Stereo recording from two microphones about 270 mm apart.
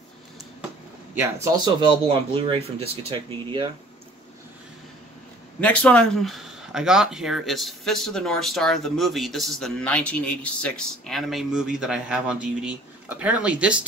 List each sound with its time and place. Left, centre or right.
1.1 s speech: centre
5.6 s speech: centre